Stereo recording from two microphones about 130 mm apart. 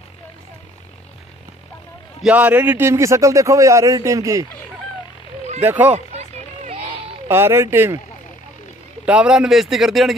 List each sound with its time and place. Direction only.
2.2 s a man's voice: 10° right (ahead or behind)
5.6 s speech: 15° right (ahead or behind)
5.9 s a sound: 60° right (ahead or behind)
7.2 s a man's voice: 20° right (ahead or behind)
9.0 s speech: 10° right (ahead or behind)